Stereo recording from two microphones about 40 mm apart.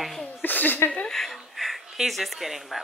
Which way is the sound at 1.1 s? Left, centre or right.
Centre.